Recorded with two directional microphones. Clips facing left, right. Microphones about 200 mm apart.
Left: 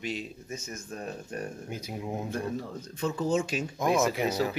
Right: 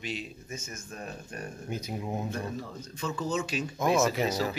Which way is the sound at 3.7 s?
15° left (ahead or behind).